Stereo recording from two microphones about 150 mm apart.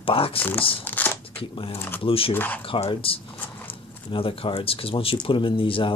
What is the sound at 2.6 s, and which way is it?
Speech, 35° left (ahead or behind).